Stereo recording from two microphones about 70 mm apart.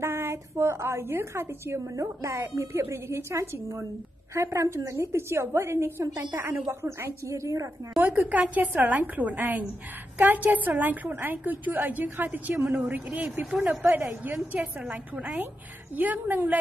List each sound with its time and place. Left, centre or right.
0.0 s a woman's voice: right
5.0 s a woman's voice: right
8.1 s a woman's voice: right
14.2 s a woman's voice: right
16.0 s a woman's voice: right